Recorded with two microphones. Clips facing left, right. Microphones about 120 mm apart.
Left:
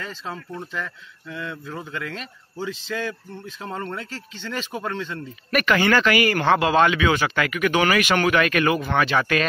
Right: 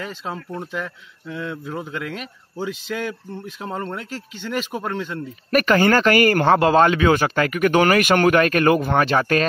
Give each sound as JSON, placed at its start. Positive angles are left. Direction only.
{"t": 0.0, "sound": "a man's voice", "side_deg": -15}
{"t": 5.5, "sound": "speech", "side_deg": -40}